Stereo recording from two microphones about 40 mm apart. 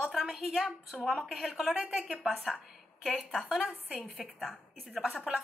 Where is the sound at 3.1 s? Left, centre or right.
Centre.